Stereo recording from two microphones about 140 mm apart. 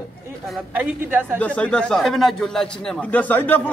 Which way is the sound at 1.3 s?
10° left (ahead or behind).